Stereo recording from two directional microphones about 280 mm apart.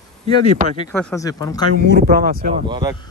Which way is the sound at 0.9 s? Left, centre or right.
Centre.